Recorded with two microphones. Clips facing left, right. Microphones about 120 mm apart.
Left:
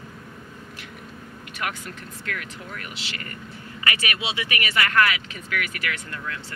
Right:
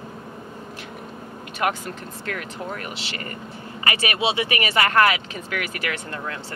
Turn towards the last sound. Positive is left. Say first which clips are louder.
# right 3 dB
turn(degrees=-30)  # may be behind; listen again after turning